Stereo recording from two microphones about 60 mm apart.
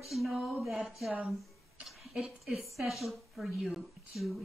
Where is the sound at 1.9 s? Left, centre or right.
Centre.